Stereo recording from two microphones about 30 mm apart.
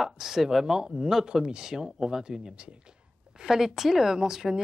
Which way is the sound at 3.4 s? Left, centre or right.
Centre.